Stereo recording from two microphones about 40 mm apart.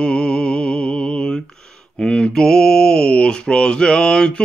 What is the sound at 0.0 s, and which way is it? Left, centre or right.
Mantra, left.